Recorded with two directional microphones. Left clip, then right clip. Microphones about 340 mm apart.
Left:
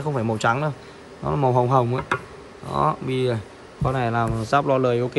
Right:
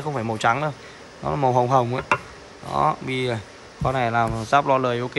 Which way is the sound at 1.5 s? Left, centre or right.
Centre.